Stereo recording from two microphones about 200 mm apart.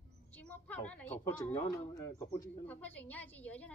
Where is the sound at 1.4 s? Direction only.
15° left (ahead or behind).